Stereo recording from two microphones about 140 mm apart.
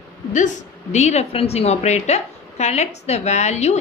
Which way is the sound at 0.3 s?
60° left (ahead or behind).